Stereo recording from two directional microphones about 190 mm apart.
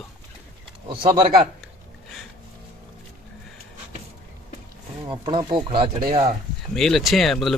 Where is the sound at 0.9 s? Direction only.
25° right (ahead or behind).